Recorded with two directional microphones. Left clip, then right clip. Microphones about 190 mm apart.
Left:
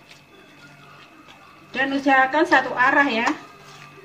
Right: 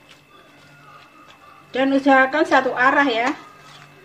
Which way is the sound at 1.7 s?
45° right (ahead or behind).